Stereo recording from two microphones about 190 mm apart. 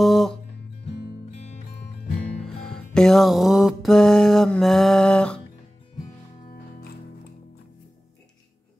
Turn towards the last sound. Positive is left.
turn(degrees=50)  # may be behind; listen again after turning